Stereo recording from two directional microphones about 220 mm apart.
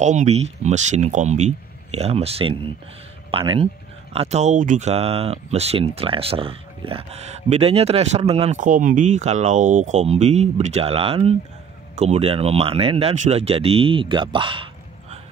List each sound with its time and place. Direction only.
0.0 s speech: 30° right (ahead or behind)